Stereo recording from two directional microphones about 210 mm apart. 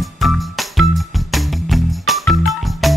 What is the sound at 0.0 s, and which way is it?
Music, centre (ahead or behind).